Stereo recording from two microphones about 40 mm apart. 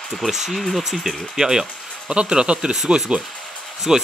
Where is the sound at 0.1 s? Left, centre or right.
Centre.